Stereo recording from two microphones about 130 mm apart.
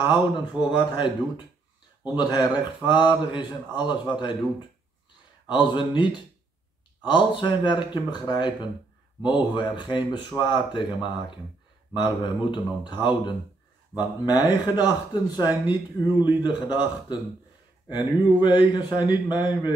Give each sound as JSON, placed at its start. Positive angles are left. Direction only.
{"t": 0.0, "sound": "speech", "side_deg": 35}
{"t": 13.9, "sound": "speech", "side_deg": 30}
{"t": 16.1, "sound": "speech", "side_deg": -15}
{"t": 16.4, "sound": "speech", "side_deg": 35}
{"t": 17.8, "sound": "speech", "side_deg": 35}